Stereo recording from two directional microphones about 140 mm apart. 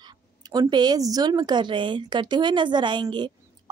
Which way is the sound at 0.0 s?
30° right (ahead or behind).